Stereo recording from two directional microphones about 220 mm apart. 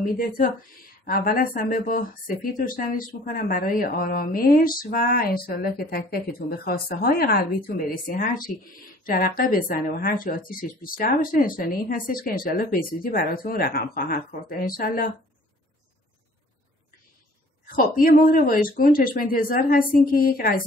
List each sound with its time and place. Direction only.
0.0 s a woman's voice: 40° left (ahead or behind)
17.7 s a woman's voice: 40° left (ahead or behind)